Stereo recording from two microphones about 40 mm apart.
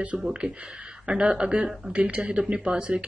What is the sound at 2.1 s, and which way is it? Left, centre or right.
Speech, right.